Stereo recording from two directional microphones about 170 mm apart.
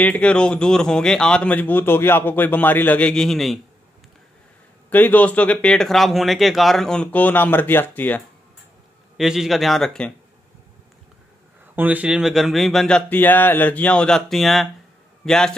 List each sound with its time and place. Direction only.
0.0 s a man's voice: 5° left (ahead or behind)
4.8 s a man's voice: 10° left (ahead or behind)
9.1 s speech: 5° right (ahead or behind)
11.7 s speech: 10° right (ahead or behind)